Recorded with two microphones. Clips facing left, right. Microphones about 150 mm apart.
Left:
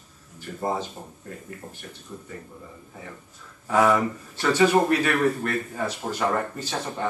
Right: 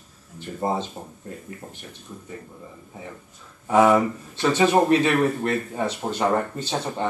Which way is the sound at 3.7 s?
20° right (ahead or behind).